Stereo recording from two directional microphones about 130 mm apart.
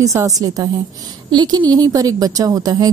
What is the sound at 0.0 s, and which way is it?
A woman's voice, 25° right (ahead or behind).